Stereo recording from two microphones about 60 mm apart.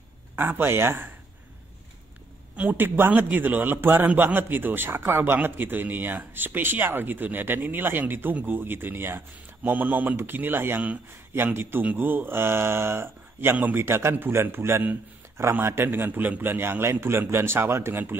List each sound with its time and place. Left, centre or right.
0.4 s a man's voice: right
2.5 s a man's voice: right